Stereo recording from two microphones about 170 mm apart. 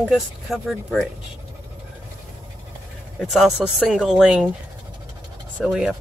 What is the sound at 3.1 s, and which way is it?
Speech, centre (ahead or behind).